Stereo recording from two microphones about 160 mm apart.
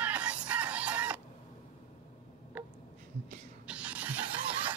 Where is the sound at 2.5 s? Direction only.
10° right (ahead or behind).